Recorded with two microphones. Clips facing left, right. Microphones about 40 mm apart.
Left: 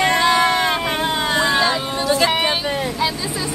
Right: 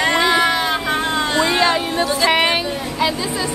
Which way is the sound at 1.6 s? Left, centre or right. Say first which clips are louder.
Right 3 dB; right.